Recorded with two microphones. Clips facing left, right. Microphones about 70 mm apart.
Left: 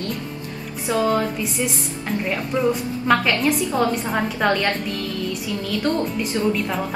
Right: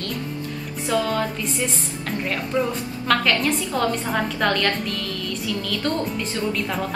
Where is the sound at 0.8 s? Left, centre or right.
Centre.